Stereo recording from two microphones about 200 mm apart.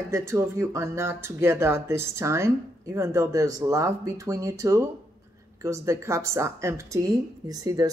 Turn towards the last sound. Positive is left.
turn(degrees=-20)  # may be behind; listen again after turning